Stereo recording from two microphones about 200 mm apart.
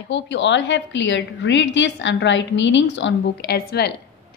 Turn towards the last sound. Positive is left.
turn(degrees=55)  # may be behind; listen again after turning